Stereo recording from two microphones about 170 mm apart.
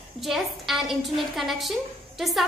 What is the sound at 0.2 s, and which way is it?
A woman's voice, centre (ahead or behind).